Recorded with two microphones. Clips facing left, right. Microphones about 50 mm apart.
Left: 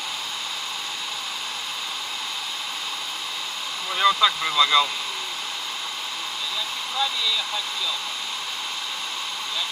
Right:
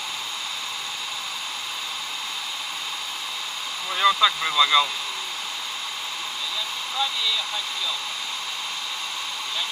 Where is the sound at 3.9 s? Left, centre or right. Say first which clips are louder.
Even; centre.